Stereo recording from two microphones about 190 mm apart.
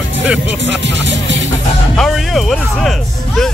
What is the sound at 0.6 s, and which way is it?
Music, 75° right (ahead or behind).